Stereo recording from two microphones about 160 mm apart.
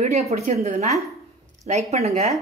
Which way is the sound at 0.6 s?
45° right (ahead or behind).